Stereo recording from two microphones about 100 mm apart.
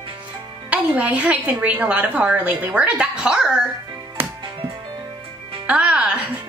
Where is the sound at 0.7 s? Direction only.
15° right (ahead or behind).